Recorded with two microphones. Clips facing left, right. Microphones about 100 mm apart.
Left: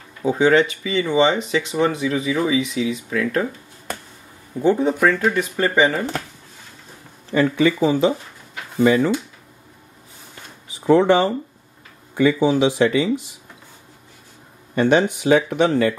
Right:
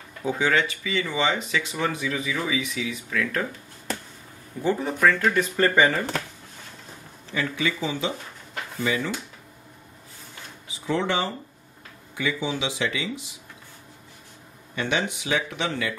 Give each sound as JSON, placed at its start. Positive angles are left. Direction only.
{"t": 0.2, "sound": "speech", "side_deg": 20}
{"t": 4.6, "sound": "speech", "side_deg": 20}
{"t": 7.3, "sound": "speech", "side_deg": 45}
{"t": 10.9, "sound": "speech", "side_deg": 50}
{"t": 14.8, "sound": "speech", "side_deg": 45}